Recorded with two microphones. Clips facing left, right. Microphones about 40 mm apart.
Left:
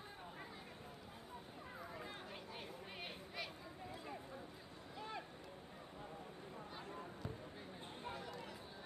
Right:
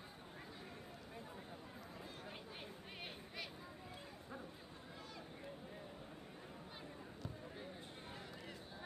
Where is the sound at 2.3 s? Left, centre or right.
Centre.